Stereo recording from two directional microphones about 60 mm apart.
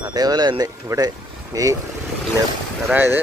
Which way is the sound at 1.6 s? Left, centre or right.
Right.